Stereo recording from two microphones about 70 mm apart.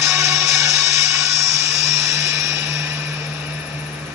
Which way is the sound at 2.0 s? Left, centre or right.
Right.